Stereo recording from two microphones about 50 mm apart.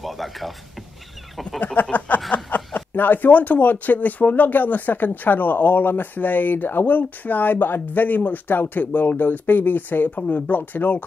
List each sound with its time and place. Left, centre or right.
0.0 s speech: centre
1.8 s speech: left